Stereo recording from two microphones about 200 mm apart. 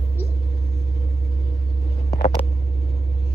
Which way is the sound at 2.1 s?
30° left (ahead or behind).